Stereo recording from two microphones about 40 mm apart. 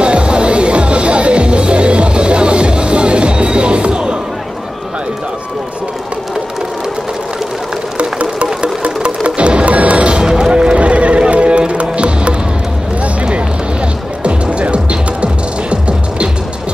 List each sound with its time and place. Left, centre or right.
0.0 s music: right
8.0 s music: right
13.0 s a sound: right
14.2 s music: right